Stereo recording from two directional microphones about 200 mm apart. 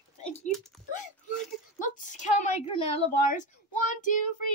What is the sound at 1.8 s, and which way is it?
A woman's voice, 40° left (ahead or behind).